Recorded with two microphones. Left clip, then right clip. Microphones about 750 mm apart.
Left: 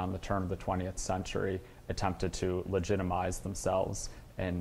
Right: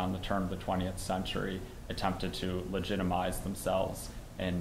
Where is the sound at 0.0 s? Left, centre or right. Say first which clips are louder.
Right 1 dB; left.